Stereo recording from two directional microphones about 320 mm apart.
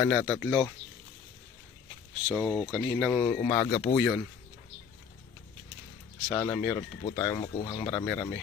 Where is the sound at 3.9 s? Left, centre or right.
Centre.